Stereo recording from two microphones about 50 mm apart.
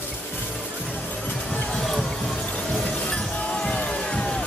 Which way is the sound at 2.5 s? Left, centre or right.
Left.